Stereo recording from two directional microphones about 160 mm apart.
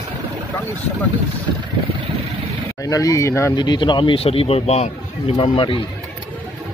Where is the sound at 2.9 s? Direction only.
20° left (ahead or behind).